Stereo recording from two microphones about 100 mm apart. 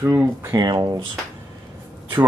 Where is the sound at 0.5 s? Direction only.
40° right (ahead or behind).